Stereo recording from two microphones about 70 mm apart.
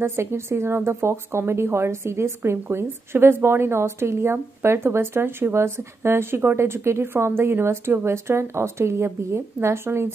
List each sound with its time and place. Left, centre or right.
0.0 s a woman's voice: right